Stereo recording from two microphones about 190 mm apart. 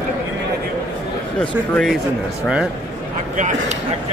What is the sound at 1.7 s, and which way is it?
Speech, centre (ahead or behind).